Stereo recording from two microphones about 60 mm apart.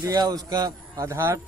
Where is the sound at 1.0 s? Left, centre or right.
Right.